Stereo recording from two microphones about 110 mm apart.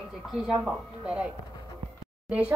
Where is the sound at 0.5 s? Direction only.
5° right (ahead or behind).